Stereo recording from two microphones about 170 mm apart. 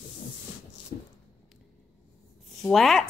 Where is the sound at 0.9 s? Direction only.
60° left (ahead or behind).